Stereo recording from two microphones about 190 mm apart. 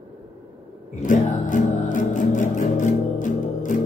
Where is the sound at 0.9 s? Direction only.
45° left (ahead or behind).